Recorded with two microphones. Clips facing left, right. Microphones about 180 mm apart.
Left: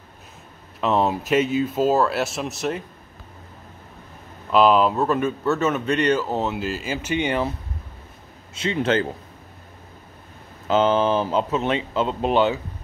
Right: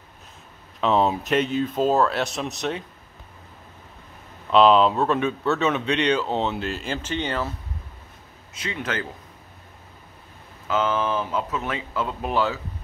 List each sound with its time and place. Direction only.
0.7 s speech: 5° left (ahead or behind)
4.5 s speech: 5° left (ahead or behind)
8.5 s speech: 25° left (ahead or behind)
10.7 s speech: 30° left (ahead or behind)